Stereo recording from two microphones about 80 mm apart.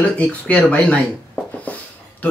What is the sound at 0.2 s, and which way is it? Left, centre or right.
Speech, centre.